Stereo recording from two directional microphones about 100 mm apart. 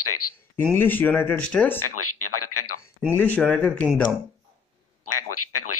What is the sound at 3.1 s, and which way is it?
Speech, 15° left (ahead or behind).